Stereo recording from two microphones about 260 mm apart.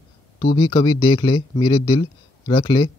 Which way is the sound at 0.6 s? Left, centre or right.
Centre.